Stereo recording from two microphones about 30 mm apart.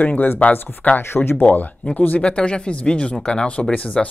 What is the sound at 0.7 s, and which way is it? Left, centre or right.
Speech, left.